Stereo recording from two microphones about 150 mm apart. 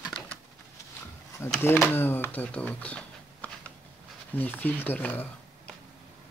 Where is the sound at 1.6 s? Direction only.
15° left (ahead or behind).